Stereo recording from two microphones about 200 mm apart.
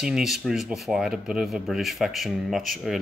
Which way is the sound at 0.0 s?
Centre (ahead or behind).